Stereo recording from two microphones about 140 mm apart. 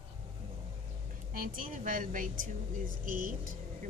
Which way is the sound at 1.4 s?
70° right (ahead or behind).